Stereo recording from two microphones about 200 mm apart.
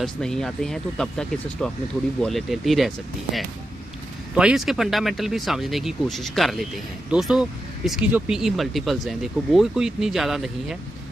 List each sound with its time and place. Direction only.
0.0 s speech: 5° left (ahead or behind)